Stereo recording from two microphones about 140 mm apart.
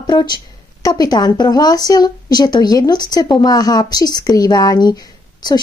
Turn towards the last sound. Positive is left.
turn(degrees=30)  # may be behind; listen again after turning